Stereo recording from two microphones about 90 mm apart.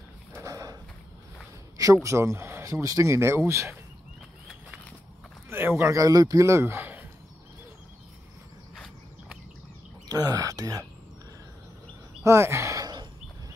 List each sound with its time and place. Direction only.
0.5 s a sound: 40° right (ahead or behind)
2.0 s speech: 30° right (ahead or behind)
5.5 s speech: 25° right (ahead or behind)
10.0 s speech: 45° right (ahead or behind)
12.3 s speech: 30° right (ahead or behind)